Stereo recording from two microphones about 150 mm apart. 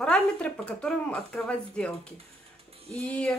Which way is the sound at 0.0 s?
5° left (ahead or behind).